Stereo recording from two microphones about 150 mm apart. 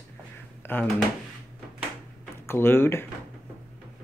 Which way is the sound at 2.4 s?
15° left (ahead or behind).